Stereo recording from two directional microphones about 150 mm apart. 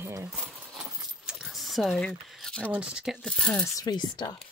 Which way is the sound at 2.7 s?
5° right (ahead or behind).